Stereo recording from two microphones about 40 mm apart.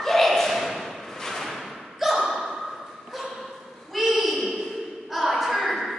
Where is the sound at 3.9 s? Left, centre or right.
Centre.